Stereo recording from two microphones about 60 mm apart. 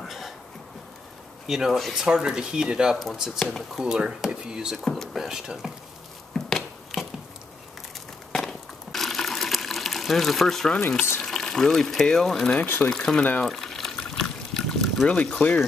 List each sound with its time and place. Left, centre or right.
1.5 s speech: centre
2.0 s speech: centre
3.3 s speech: centre
3.8 s speech: centre
4.7 s speech: centre
6.3 s a sound: centre
8.3 s water: centre
11.2 s speech: centre
12.6 s speech: left
12.9 s speech: centre
13.4 s liquid: centre
15.4 s speech: left